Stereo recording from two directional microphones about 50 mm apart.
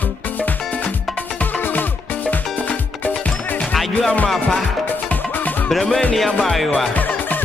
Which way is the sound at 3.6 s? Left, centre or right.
Centre.